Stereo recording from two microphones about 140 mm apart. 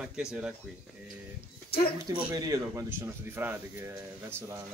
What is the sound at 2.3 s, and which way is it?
Speech, 25° right (ahead or behind).